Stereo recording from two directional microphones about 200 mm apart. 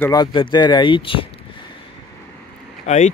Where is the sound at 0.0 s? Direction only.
20° left (ahead or behind).